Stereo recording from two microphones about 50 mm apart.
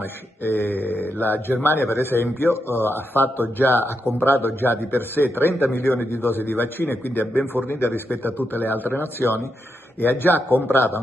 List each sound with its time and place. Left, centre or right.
0.4 s a man's voice: left